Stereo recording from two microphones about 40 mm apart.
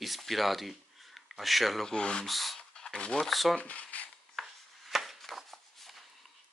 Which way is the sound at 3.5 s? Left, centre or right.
Left.